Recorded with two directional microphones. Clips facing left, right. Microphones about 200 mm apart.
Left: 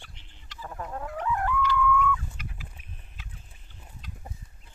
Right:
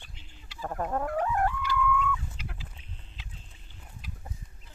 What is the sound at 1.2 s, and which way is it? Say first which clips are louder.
Chicken: left 1 dB; 40° right (ahead or behind).